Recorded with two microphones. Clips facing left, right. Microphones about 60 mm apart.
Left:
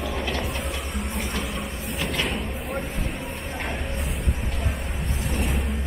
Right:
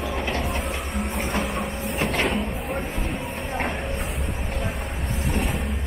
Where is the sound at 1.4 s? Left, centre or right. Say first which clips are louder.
Right 4 dB; right.